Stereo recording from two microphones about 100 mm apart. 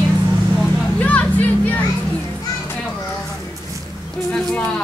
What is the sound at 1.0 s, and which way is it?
Music, 15° left (ahead or behind).